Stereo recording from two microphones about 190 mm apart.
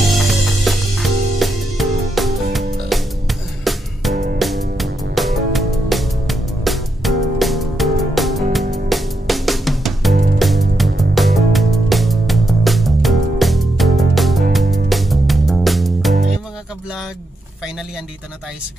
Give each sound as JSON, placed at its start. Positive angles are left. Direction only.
{"t": 0.1, "sound": "music", "side_deg": 0}
{"t": 4.1, "sound": "music", "side_deg": -40}
{"t": 4.4, "sound": "music", "side_deg": 0}